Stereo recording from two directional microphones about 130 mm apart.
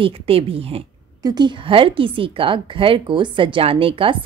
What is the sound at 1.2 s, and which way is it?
A woman's voice, 30° right (ahead or behind).